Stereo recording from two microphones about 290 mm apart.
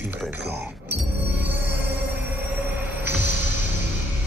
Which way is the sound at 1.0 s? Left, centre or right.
Centre.